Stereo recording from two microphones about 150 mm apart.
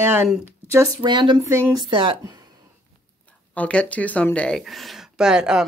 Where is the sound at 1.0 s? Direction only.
30° right (ahead or behind).